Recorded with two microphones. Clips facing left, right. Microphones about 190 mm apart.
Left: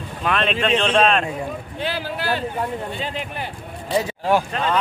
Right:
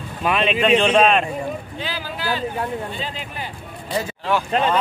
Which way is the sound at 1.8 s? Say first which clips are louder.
Left 3 dB; 60° left (ahead or behind).